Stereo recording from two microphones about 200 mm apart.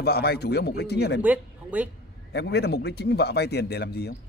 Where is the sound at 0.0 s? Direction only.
55° left (ahead or behind).